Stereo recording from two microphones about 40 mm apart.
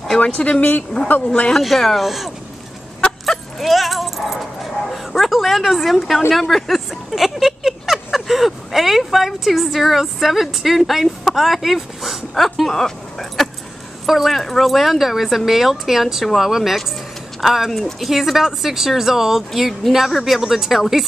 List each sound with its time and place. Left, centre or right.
0.2 s speech: left
0.6 s a woman's voice: left
1.6 s speech: centre
2.0 s speech: centre
20.3 s speech: centre